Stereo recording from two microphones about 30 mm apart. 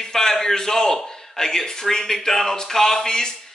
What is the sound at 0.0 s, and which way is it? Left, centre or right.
Speech, centre.